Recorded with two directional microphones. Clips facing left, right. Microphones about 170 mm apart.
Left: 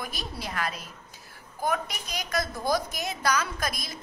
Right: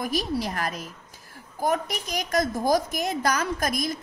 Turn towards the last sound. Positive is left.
turn(degrees=-45)  # may be behind; listen again after turning